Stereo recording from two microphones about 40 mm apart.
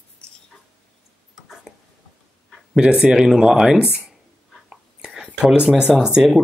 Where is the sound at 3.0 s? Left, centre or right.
Centre.